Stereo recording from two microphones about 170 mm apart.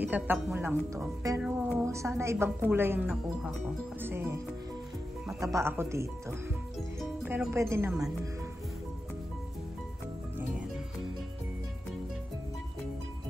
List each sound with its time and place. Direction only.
0.0 s speech: 10° right (ahead or behind)
5.4 s speech: 15° right (ahead or behind)
7.2 s speech: 15° right (ahead or behind)